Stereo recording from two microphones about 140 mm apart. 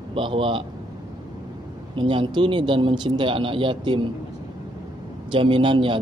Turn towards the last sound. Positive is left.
turn(degrees=-35)  # may be behind; listen again after turning